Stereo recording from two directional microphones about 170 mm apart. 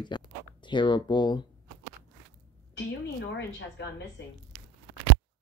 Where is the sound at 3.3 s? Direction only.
90° left.